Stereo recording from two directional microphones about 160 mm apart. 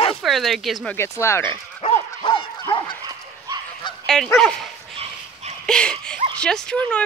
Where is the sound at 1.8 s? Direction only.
30° left (ahead or behind).